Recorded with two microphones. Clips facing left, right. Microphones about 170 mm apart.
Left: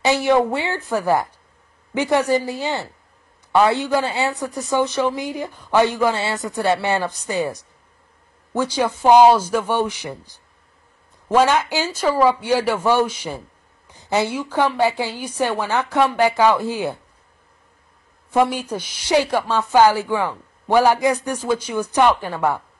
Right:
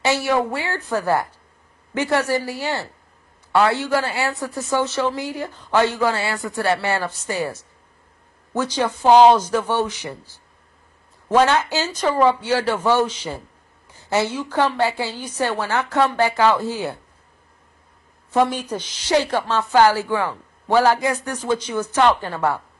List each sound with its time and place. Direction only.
0.0 s a woman's voice: 20° left (ahead or behind)
18.3 s a woman's voice: 10° left (ahead or behind)